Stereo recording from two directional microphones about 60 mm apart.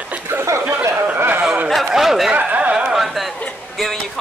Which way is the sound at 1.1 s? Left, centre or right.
Right.